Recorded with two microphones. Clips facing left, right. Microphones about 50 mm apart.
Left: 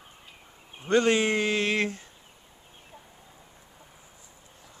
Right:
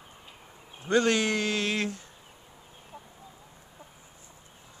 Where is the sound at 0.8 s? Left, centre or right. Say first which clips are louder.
Left 2 dB; left.